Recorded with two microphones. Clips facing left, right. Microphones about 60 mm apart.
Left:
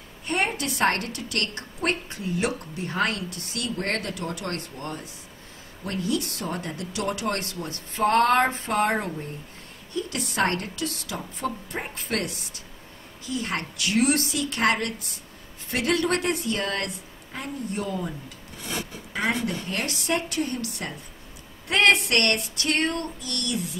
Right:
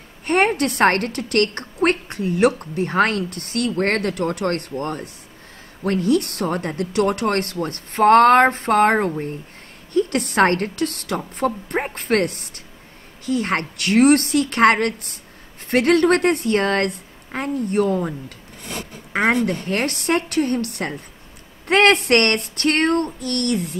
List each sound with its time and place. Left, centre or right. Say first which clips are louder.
0.2 s a woman's voice: right 9 dB; right
19.4 s a woman's voice: right 7 dB; right